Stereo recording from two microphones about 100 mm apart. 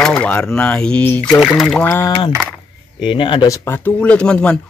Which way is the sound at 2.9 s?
55° left (ahead or behind).